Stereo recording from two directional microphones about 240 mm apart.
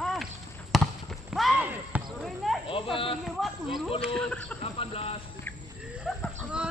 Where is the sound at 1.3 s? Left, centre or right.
Centre.